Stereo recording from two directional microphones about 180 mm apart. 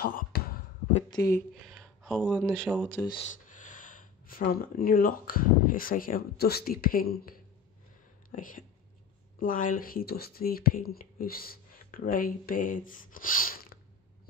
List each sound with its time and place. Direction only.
0.0 s a sound: 55° left (ahead or behind)
1.1 s speech: 20° left (ahead or behind)
1.7 s speech: centre (ahead or behind)
3.2 s speech: 45° left (ahead or behind)